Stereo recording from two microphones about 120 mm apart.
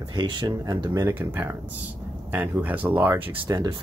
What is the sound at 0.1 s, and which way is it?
Speech, 40° right (ahead or behind).